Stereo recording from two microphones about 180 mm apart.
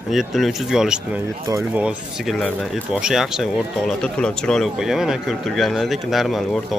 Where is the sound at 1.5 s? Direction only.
15° right (ahead or behind).